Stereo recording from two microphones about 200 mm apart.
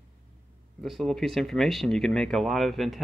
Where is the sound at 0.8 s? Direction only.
Centre (ahead or behind).